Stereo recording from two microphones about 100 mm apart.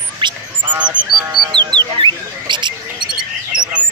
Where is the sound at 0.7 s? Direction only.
10° right (ahead or behind).